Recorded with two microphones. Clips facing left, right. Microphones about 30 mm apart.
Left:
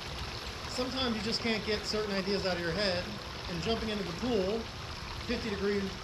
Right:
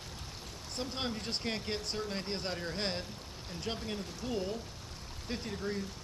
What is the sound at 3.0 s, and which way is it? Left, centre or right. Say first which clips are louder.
Speech: left 6 dB; left.